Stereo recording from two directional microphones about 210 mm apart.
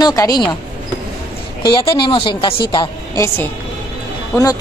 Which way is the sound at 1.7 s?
25° left (ahead or behind).